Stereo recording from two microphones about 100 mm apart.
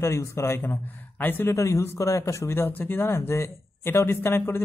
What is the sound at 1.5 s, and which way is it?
Speech, 30° left (ahead or behind).